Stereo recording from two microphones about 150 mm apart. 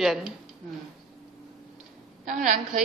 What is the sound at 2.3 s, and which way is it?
Speech, 60° right (ahead or behind).